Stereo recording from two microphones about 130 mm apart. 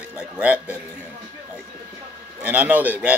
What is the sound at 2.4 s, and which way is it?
Speech, 10° right (ahead or behind).